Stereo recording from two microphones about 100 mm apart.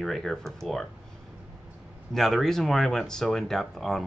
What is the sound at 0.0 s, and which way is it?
Speech, 5° left (ahead or behind).